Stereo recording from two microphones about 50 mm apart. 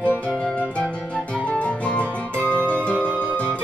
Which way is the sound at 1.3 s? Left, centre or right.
Left.